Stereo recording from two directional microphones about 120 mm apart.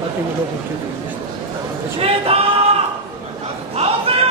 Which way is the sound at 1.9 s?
55° right (ahead or behind).